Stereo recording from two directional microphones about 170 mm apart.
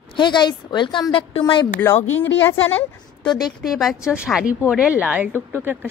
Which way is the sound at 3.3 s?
25° left (ahead or behind).